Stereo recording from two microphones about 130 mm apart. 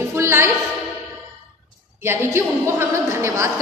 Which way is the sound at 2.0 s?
20° right (ahead or behind).